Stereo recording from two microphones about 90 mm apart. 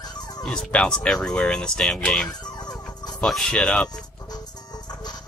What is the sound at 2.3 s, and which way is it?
Music, 50° left (ahead or behind).